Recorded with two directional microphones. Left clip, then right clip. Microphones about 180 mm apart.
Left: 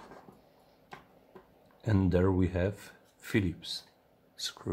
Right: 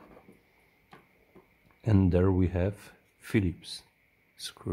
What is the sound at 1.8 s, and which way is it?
Speech, 25° right (ahead or behind).